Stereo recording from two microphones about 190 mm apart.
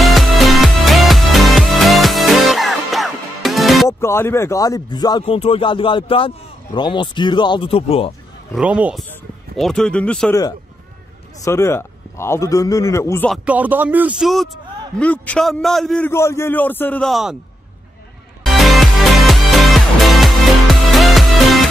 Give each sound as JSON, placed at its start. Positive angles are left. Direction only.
{"t": 0.0, "sound": "music", "side_deg": 0}
{"t": 4.0, "sound": "speech", "side_deg": 15}
{"t": 8.5, "sound": "speech", "side_deg": -5}
{"t": 11.4, "sound": "a man's voice", "side_deg": 15}
{"t": 13.3, "sound": "a man's voice", "side_deg": -10}
{"t": 18.4, "sound": "music", "side_deg": 0}